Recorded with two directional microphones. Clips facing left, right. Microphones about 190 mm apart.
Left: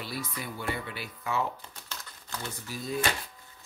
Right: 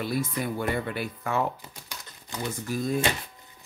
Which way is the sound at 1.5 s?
15° right (ahead or behind).